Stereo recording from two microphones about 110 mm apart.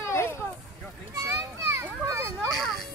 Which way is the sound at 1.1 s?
25° right (ahead or behind).